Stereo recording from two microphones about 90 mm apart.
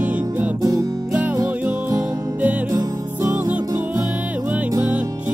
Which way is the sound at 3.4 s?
15° right (ahead or behind).